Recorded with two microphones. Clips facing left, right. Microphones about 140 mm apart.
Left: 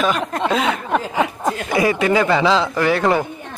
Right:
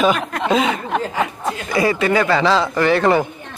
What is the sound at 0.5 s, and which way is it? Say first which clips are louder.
Speech: right 4 dB; 5° right (ahead or behind).